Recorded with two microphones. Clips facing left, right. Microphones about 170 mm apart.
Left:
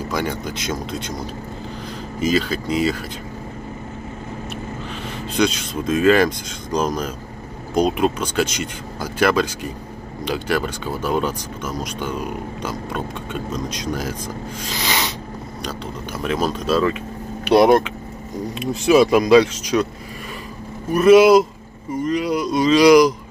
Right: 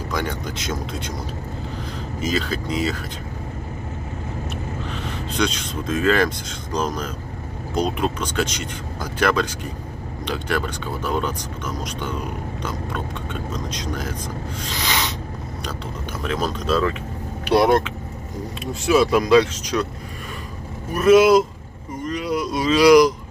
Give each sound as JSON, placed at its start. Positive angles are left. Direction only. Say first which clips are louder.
{"t": 0.1, "sound": "speech", "louder": "left 1 dB", "side_deg": 5}
{"t": 2.1, "sound": "speech", "louder": "left 4 dB", "side_deg": 0}
{"t": 5.4, "sound": "speech", "louder": "left 4 dB", "side_deg": 10}
{"t": 16.3, "sound": "speech", "louder": "left 2 dB", "side_deg": 5}
{"t": 17.5, "sound": "speech", "louder": "left 3 dB", "side_deg": 15}
{"t": 20.9, "sound": "speech", "louder": "left 3 dB", "side_deg": 0}
{"t": 22.0, "sound": "a sound", "louder": "left 3 dB", "side_deg": 0}